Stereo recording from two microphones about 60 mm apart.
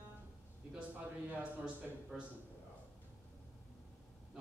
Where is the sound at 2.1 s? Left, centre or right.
Centre.